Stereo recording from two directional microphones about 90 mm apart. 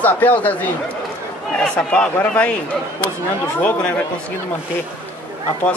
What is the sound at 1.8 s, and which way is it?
Speech, 15° left (ahead or behind).